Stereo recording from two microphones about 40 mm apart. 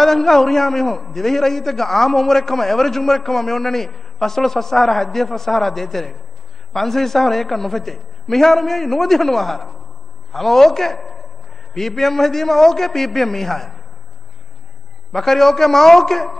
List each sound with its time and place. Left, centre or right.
0.0 s a man's voice: centre
15.1 s a man's voice: centre